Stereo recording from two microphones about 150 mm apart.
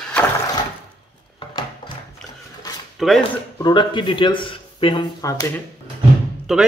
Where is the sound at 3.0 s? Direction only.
5° right (ahead or behind).